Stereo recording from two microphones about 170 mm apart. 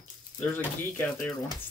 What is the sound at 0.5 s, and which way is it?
Speech, 10° left (ahead or behind).